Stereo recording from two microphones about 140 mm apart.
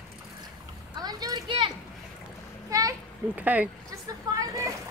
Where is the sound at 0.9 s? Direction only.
30° right (ahead or behind).